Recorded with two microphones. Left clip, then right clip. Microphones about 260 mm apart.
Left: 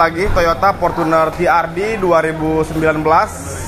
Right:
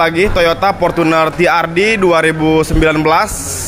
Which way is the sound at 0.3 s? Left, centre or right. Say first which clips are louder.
Right 2 dB; right.